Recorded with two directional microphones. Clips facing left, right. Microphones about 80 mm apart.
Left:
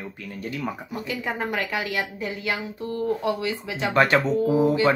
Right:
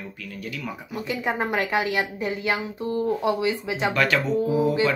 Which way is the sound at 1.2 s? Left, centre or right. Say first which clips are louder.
Right 3 dB; right.